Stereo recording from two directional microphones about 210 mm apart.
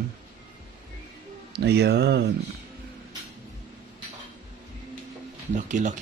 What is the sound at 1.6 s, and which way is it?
Speech, 50° right (ahead or behind).